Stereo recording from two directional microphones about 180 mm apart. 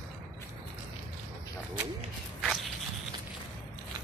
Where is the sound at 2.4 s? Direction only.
Centre (ahead or behind).